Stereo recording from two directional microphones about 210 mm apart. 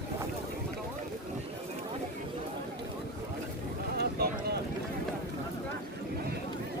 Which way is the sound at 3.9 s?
50° right (ahead or behind).